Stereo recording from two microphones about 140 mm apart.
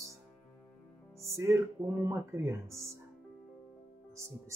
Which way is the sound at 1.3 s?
20° right (ahead or behind).